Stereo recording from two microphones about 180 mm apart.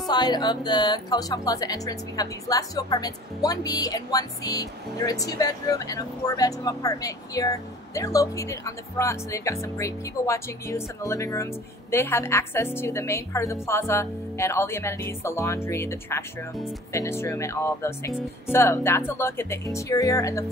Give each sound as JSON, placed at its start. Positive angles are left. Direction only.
{"t": 0.1, "sound": "a woman's voice", "side_deg": 25}